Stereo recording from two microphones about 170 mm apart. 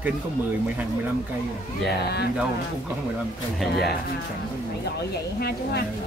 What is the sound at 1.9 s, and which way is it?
Speech, 75° left (ahead or behind).